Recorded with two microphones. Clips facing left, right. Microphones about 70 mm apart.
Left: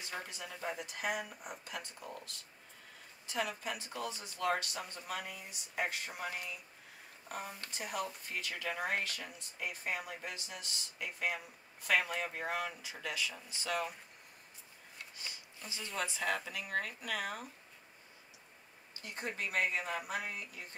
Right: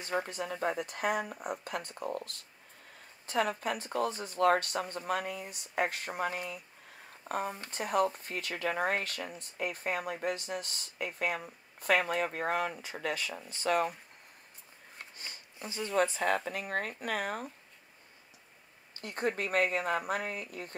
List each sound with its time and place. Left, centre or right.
0.1 s speech: right
15.0 s a sound: right
15.9 s speech: right
18.9 s speech: right